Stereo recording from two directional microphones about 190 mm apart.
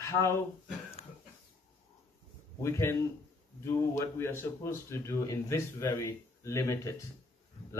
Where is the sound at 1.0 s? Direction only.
30° left (ahead or behind).